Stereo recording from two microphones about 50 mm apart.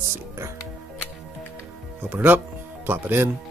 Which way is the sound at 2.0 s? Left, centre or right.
Right.